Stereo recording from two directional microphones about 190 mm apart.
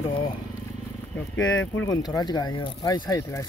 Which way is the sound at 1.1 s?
10° left (ahead or behind).